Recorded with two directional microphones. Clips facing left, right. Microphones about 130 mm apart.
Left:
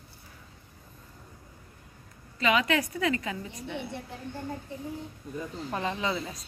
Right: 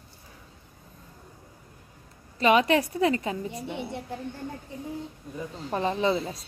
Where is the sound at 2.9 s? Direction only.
30° right (ahead or behind).